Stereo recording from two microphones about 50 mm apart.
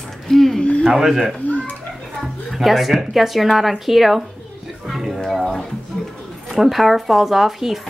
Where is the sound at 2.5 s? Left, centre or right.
Centre.